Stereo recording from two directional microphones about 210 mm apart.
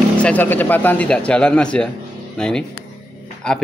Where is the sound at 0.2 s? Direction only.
10° left (ahead or behind).